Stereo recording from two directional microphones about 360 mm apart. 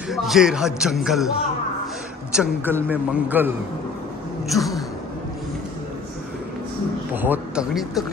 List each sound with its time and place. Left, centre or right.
0.1 s speech: centre
2.3 s speech: centre
7.2 s speech: centre